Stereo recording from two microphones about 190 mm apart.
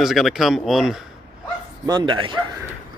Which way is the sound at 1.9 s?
25° right (ahead or behind).